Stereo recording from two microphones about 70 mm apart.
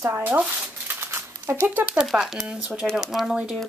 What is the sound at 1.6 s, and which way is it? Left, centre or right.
Speech, right.